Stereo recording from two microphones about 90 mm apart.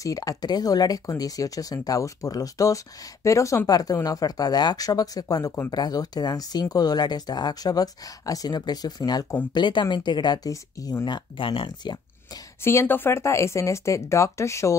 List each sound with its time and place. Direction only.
0.0 s speech: 40° left (ahead or behind)
10.5 s speech: 45° left (ahead or behind)
11.1 s speech: 65° left (ahead or behind)
12.6 s speech: 25° left (ahead or behind)